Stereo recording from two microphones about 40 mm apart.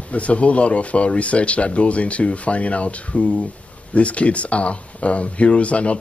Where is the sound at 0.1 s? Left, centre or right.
Left.